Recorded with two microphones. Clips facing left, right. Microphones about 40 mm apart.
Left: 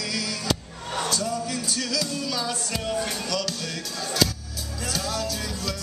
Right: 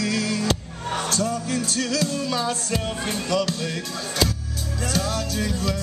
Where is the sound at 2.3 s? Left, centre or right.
Centre.